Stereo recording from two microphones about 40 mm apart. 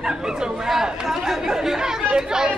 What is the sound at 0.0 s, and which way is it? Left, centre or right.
Chatter, centre.